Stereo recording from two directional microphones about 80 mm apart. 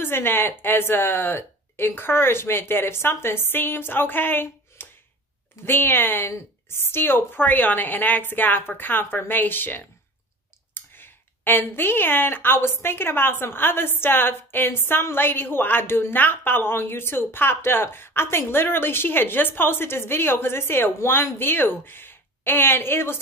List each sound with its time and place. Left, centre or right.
0.0 s a woman's voice: left